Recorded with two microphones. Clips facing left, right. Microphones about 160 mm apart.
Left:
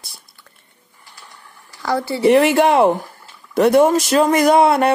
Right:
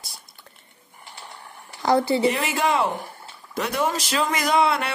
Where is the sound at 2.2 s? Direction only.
65° left (ahead or behind).